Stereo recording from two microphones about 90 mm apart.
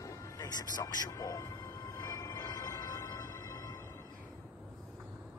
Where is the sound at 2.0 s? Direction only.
40° left (ahead or behind).